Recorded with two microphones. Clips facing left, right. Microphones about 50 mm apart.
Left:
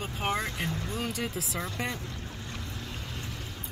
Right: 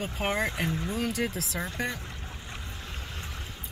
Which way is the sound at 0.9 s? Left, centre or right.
Centre.